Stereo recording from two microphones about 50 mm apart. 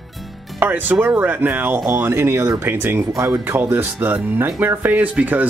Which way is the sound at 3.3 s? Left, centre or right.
Right.